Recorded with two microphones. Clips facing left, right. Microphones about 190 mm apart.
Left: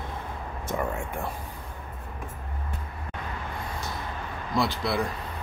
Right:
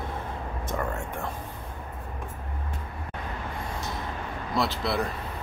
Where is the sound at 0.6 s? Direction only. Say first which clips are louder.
Left 2 dB; 10° left (ahead or behind).